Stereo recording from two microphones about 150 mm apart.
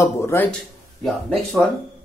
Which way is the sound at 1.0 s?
5° left (ahead or behind).